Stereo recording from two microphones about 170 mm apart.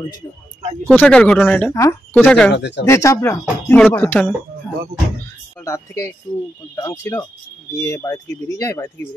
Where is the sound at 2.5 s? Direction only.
90° left.